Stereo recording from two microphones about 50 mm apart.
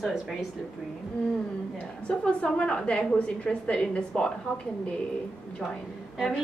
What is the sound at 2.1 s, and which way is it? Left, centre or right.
A woman's voice, left.